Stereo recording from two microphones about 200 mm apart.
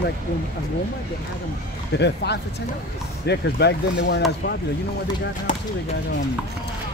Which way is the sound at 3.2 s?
55° left (ahead or behind).